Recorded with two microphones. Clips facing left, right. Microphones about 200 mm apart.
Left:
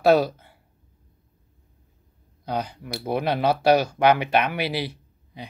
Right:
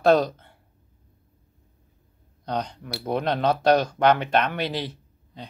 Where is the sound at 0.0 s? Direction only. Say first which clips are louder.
Left 1 dB; 10° left (ahead or behind).